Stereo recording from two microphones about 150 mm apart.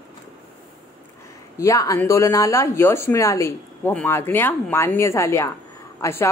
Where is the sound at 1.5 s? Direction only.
20° left (ahead or behind).